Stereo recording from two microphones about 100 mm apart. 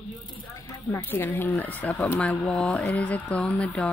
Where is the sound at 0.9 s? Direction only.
20° left (ahead or behind).